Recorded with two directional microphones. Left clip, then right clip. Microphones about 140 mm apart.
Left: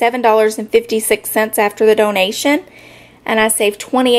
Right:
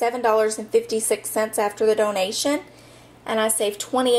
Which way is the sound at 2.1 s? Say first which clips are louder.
Left 8 dB; 5° left (ahead or behind).